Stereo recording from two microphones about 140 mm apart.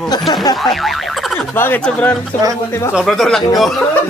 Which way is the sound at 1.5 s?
15° left (ahead or behind).